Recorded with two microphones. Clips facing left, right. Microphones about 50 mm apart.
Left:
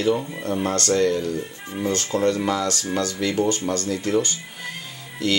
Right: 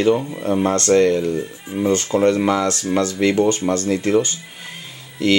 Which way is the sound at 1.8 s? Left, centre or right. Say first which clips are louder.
Right 5 dB; centre.